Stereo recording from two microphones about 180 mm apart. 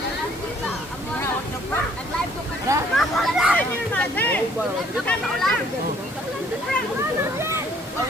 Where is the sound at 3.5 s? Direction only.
10° left (ahead or behind).